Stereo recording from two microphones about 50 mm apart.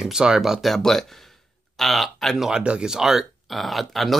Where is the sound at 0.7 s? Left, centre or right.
Centre.